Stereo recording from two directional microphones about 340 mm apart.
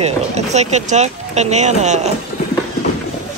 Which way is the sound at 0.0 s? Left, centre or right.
Centre.